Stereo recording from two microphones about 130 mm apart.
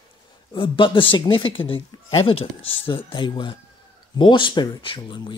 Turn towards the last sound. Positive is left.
turn(degrees=40)  # may be behind; listen again after turning